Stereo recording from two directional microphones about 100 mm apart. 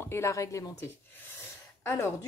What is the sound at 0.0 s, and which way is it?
Speech, 25° left (ahead or behind).